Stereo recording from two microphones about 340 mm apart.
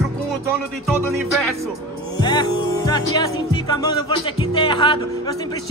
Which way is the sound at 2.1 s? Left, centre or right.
Centre.